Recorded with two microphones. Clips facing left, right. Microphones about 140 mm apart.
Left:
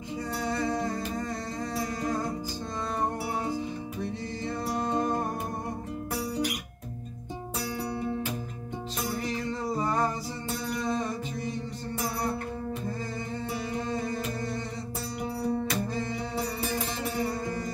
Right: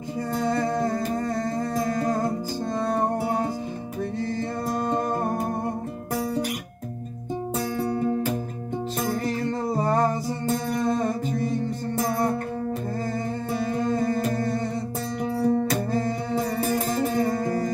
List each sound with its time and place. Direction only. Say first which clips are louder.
0.4 s music: right 6 dB; 50° right (ahead or behind)
4.6 s music: right 2 dB; 45° right (ahead or behind)
7.5 s music: right 6 dB; 45° right (ahead or behind)
13.6 s music: right 9 dB; 50° right (ahead or behind)